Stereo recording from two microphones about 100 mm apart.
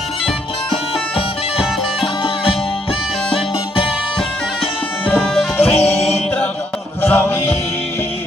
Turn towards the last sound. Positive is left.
turn(degrees=25)  # may be behind; listen again after turning